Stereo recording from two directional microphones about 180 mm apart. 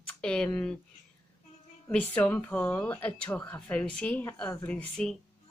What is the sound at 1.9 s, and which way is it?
Speech, 10° left (ahead or behind).